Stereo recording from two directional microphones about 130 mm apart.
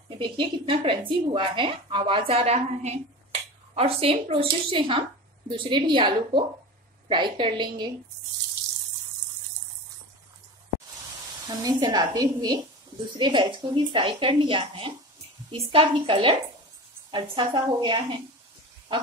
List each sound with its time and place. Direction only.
0.2 s a woman's voice: 40° right (ahead or behind)
11.4 s a woman's voice: 30° right (ahead or behind)